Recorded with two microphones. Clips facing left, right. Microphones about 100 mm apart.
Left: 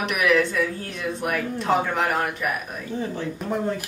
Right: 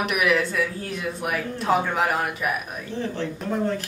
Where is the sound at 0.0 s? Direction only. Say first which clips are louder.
Left 1 dB; centre (ahead or behind).